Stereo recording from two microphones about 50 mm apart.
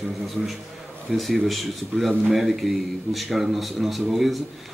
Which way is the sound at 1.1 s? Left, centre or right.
Centre.